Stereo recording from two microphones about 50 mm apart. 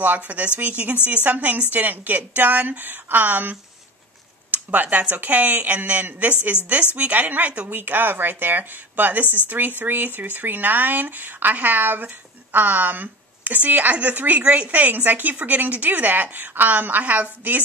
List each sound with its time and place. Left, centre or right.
0.0 s speech: right
4.5 s a sound: right
5.1 s a woman's voice: right